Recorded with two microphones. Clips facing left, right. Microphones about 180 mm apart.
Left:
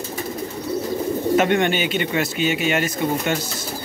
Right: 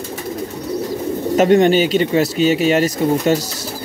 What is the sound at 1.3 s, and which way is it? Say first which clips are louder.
Speech: right 7 dB; 40° right (ahead or behind).